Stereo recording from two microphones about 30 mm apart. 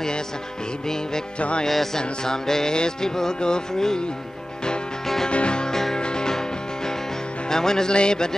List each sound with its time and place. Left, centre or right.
2.0 s music: centre
5.0 s music: centre
5.3 s music: left
5.7 s music: centre
5.9 s music: left
7.4 s music: centre